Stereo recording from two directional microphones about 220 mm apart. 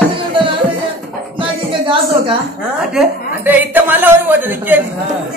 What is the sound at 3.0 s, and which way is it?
A woman's voice, 10° right (ahead or behind).